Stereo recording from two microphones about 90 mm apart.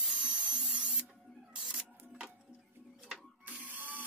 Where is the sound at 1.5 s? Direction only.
10° right (ahead or behind).